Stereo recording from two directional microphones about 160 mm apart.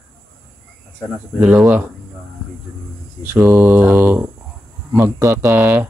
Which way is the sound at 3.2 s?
10° right (ahead or behind).